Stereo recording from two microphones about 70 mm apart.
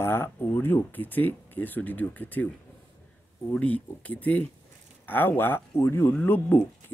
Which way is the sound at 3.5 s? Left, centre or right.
Left.